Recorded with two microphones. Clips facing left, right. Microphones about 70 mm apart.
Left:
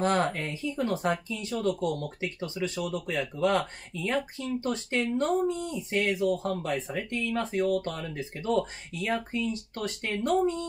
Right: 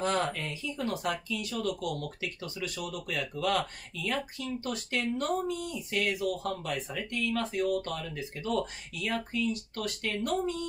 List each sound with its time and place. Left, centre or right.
0.0 s speech: left